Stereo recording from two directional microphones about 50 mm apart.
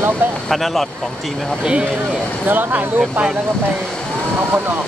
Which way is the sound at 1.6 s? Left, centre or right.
Right.